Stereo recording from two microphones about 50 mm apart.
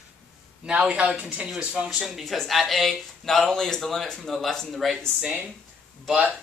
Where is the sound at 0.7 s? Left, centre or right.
Right.